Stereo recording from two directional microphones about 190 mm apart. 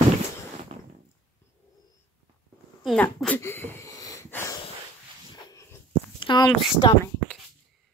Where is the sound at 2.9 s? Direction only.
5° left (ahead or behind).